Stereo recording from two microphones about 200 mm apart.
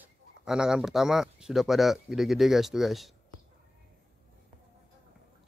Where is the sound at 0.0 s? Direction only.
5° right (ahead or behind).